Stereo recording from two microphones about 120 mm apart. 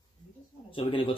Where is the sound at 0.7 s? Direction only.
50° left (ahead or behind).